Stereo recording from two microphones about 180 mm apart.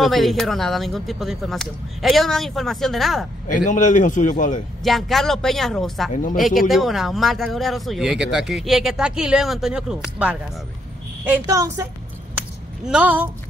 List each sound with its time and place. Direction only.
0.0 s speech: centre (ahead or behind)
3.4 s a man's voice: 45° left (ahead or behind)
4.8 s speech: centre (ahead or behind)
11.2 s a woman's voice: 15° right (ahead or behind)
12.4 s a sound: 5° right (ahead or behind)